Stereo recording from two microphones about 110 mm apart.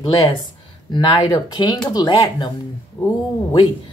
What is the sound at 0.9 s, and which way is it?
Speech, 45° left (ahead or behind).